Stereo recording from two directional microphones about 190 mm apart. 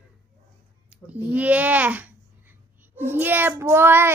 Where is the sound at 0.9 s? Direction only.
10° right (ahead or behind).